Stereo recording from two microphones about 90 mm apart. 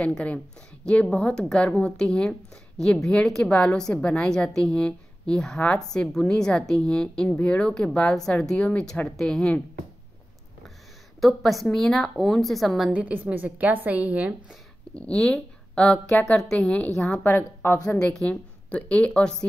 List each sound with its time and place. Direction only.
0.0 s a woman's voice: 15° left (ahead or behind)
9.1 s a woman's voice: 5° left (ahead or behind)
11.1 s a woman's voice: centre (ahead or behind)
12.9 s a woman's voice: 15° right (ahead or behind)
15.0 s a woman's voice: 10° left (ahead or behind)
17.1 s a woman's voice: 25° left (ahead or behind)
17.8 s a woman's voice: 10° left (ahead or behind)